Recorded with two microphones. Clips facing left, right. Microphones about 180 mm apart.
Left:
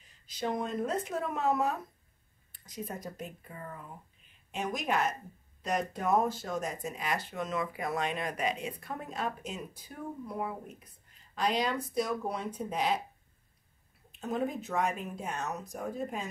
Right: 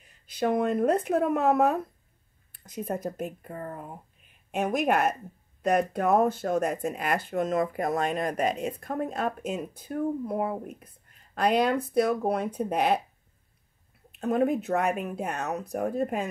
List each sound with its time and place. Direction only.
0.0 s speech: 60° right (ahead or behind)
14.2 s speech: 60° right (ahead or behind)